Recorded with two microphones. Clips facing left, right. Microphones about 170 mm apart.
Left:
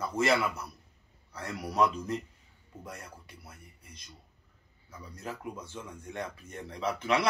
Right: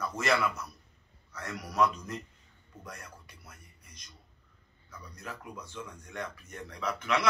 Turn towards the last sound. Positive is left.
turn(degrees=30)  # may be behind; listen again after turning